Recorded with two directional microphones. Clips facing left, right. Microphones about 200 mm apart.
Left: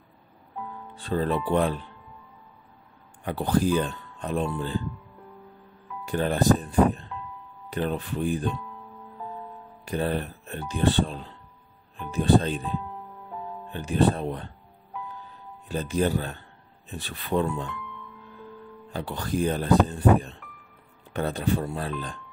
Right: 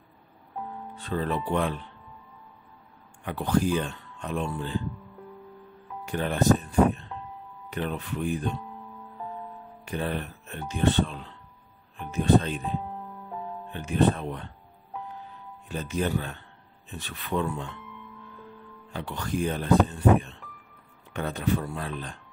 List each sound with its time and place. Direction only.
0.9 s speech: 35° left (ahead or behind)
3.3 s speech: 35° left (ahead or behind)
6.0 s speech: 35° left (ahead or behind)
9.8 s speech: 35° left (ahead or behind)
13.7 s speech: 35° left (ahead or behind)
15.7 s speech: 35° left (ahead or behind)
18.9 s speech: 35° left (ahead or behind)